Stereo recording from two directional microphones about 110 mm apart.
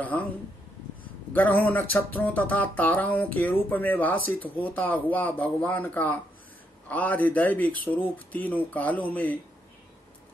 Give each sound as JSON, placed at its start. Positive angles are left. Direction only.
{"t": 0.0, "sound": "speech", "side_deg": 15}
{"t": 1.3, "sound": "speech", "side_deg": 15}